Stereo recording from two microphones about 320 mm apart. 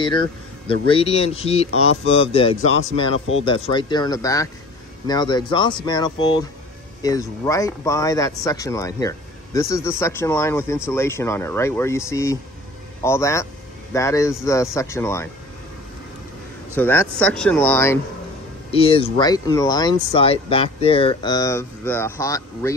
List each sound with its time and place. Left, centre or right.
0.0 s speech: centre
16.7 s speech: centre